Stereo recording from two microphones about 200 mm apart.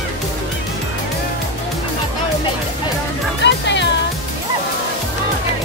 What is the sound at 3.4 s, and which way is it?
Music, 60° left (ahead or behind).